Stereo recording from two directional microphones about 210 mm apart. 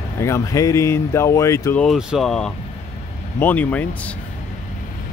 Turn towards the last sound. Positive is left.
turn(degrees=5)  # may be behind; listen again after turning